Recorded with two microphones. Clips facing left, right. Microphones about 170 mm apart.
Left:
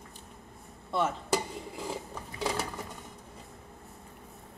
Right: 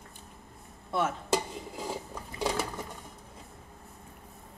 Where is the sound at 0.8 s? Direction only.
5° right (ahead or behind).